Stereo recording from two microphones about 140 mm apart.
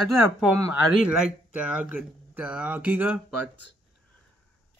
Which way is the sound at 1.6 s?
10° right (ahead or behind).